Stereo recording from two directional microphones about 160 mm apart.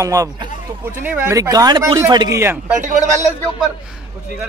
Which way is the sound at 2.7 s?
50° right (ahead or behind).